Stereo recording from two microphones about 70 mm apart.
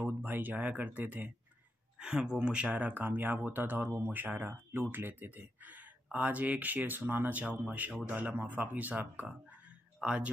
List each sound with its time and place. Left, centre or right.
0.0 s speech: right
2.0 s speech: centre